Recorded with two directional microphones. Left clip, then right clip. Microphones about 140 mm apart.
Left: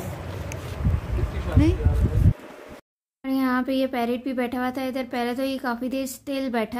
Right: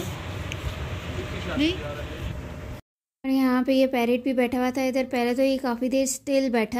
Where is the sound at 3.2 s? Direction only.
25° right (ahead or behind).